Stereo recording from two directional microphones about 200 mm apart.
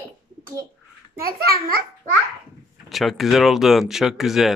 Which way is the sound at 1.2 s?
50° right (ahead or behind).